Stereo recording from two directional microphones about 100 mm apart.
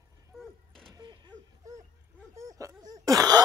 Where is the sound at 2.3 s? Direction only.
35° right (ahead or behind).